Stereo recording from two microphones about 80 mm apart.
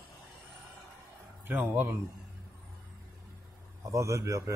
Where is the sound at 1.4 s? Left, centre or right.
Right.